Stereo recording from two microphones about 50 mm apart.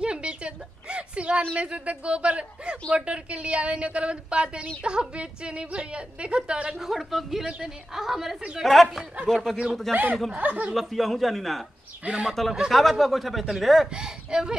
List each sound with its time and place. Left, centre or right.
0.0 s a sound: right
1.5 s a woman's voice: right
6.8 s a woman's voice: centre
10.3 s speech: right
10.7 s speech: centre
12.0 s a woman's voice: right
12.3 s speech: centre
13.9 s a woman's voice: centre